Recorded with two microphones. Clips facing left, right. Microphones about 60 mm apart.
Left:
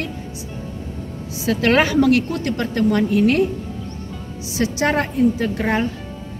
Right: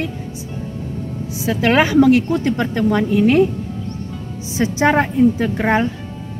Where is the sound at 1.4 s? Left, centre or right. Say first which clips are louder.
Right 1 dB; centre.